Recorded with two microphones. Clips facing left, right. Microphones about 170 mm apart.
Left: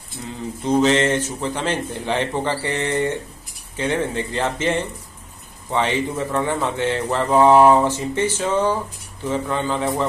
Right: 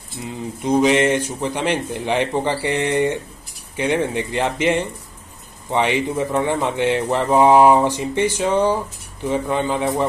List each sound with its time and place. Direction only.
0.2 s speech: 15° right (ahead or behind)